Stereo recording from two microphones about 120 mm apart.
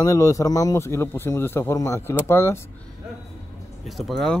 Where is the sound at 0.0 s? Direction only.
25° left (ahead or behind).